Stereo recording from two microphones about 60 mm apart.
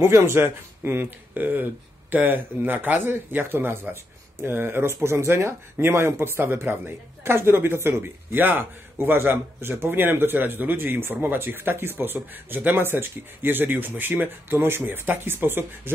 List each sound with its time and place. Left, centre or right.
0.0 s speech: right